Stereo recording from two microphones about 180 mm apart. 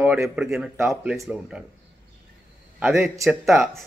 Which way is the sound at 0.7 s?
15° right (ahead or behind).